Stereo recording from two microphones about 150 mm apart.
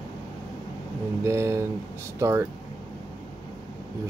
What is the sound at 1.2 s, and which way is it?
Speech, 20° right (ahead or behind).